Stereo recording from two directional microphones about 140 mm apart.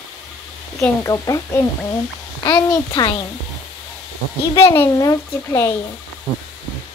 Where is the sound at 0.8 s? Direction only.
25° left (ahead or behind).